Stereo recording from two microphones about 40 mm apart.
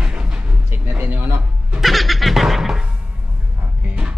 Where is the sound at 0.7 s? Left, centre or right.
Right.